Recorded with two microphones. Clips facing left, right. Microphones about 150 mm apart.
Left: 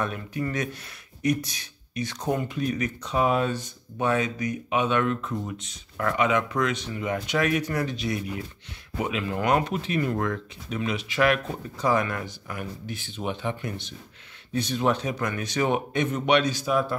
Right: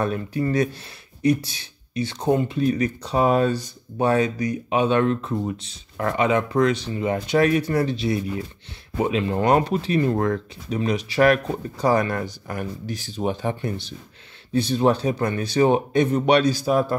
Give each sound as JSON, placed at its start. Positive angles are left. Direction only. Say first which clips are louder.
{"t": 0.0, "sound": "speech", "louder": "right 6 dB", "side_deg": -35}